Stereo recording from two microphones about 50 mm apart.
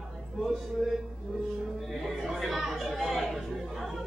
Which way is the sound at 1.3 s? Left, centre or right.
Centre.